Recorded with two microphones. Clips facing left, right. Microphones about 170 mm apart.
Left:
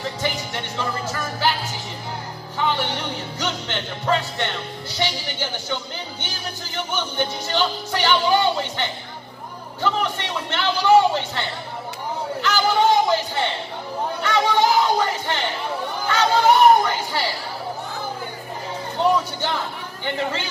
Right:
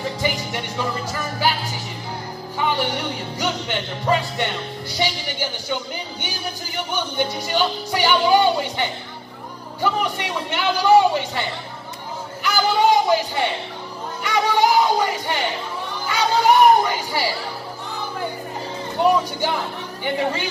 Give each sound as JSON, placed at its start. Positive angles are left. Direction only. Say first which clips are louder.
{"t": 2.6, "sound": "music", "louder": "right 1 dB", "side_deg": -10}
{"t": 6.9, "sound": "music", "louder": "right 2 dB", "side_deg": -15}
{"t": 9.8, "sound": "a man's voice", "louder": "right 1 dB", "side_deg": -10}
{"t": 12.4, "sound": "a man's voice", "louder": "right 1 dB", "side_deg": -10}
{"t": 14.2, "sound": "music", "louder": "right 1 dB", "side_deg": -10}
{"t": 16.1, "sound": "speech", "louder": "even", "side_deg": -10}
{"t": 18.9, "sound": "a man's voice", "louder": "right 2 dB", "side_deg": -10}